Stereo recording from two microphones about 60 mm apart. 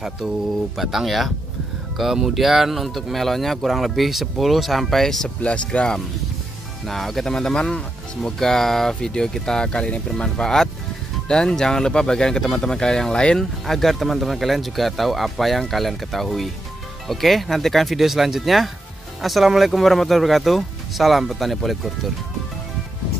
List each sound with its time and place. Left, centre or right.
0.7 s speech: centre
5.4 s speech: centre
6.9 s speech: centre